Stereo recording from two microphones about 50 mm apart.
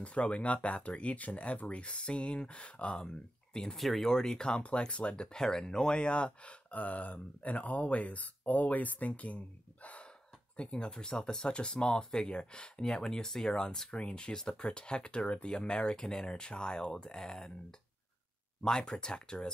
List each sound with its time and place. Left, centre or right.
0.0 s speech: left
3.5 s speech: centre
3.8 s speech: centre
4.1 s speech: centre